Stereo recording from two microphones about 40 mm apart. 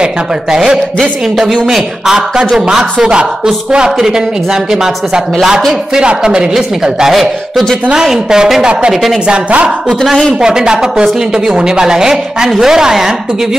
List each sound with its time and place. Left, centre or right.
0.0 s speech: centre
1.5 s speech: centre
3.0 s a woman's voice: right
8.3 s a woman's voice: centre
9.3 s a woman's voice: right
10.4 s a woman's voice: centre